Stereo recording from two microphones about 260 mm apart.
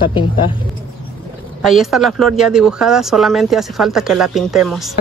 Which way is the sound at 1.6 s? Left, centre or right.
Centre.